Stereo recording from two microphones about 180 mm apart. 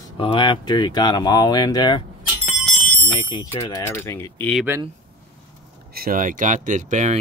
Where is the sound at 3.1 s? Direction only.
30° left (ahead or behind).